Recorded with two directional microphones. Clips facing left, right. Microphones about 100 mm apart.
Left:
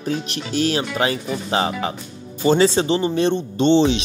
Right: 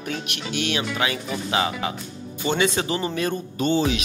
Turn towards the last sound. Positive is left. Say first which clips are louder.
# left 6 dB
turn(degrees=30)  # may be behind; listen again after turning